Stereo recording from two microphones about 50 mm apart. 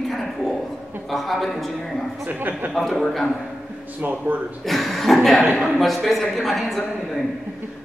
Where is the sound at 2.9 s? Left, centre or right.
Centre.